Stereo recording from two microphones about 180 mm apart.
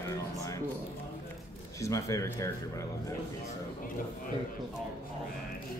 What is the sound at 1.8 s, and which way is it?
Speech, 15° left (ahead or behind).